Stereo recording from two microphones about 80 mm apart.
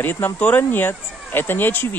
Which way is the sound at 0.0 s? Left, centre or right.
Left.